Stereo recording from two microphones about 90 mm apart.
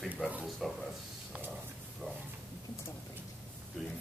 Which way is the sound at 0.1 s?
15° right (ahead or behind).